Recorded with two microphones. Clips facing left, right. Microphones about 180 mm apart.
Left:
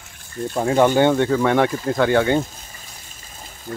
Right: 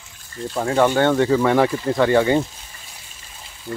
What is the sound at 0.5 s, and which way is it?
Speech, 20° left (ahead or behind).